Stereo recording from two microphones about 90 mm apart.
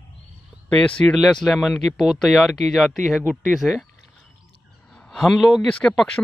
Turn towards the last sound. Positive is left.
turn(degrees=5)  # may be behind; listen again after turning